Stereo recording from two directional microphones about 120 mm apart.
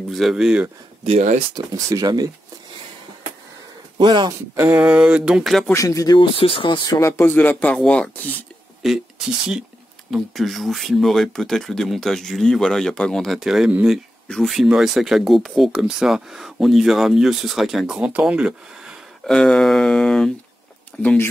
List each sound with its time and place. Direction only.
0.1 s speech: centre (ahead or behind)
1.0 s speech: 75° right (ahead or behind)
1.9 s speech: 30° right (ahead or behind)
4.0 s speech: 40° right (ahead or behind)
4.3 s speech: 20° right (ahead or behind); by 5.7 s centre (ahead or behind)
5.7 s speech: 25° left (ahead or behind)
6.3 s speech: 50° left (ahead or behind)
7.0 s speech: 20° left (ahead or behind)
8.8 s speech: centre (ahead or behind)
10.1 s speech: centre (ahead or behind)
14.2 s speech: 5° left (ahead or behind)
19.2 s speech: 5° left (ahead or behind)